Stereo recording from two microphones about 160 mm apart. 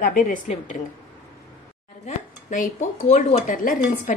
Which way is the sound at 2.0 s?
55° left (ahead or behind).